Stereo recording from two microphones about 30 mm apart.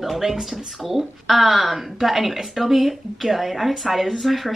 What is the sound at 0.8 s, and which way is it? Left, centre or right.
A woman's voice, centre.